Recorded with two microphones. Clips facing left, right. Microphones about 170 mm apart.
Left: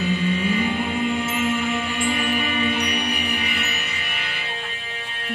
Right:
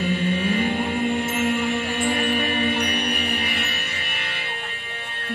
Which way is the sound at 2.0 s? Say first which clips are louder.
Right 1 dB; 55° right (ahead or behind).